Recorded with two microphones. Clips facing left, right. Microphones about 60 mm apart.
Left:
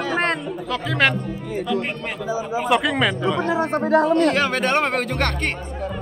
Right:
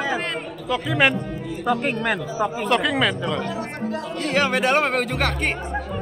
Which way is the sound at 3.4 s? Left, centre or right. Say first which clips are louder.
Left 7 dB; left.